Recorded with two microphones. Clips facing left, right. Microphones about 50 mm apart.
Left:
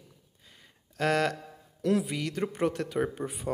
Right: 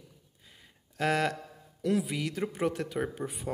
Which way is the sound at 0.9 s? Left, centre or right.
Centre.